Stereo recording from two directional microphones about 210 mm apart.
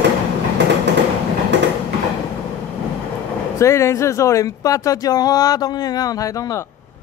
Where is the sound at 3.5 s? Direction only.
15° left (ahead or behind).